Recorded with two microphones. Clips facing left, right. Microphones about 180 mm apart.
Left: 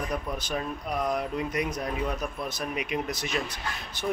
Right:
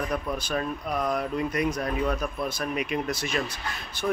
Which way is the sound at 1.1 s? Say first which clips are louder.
Right 3 dB; 15° left (ahead or behind).